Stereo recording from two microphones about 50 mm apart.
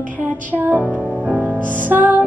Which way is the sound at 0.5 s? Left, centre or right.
Right.